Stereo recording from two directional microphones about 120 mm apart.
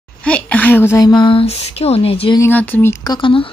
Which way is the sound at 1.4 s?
60° left (ahead or behind).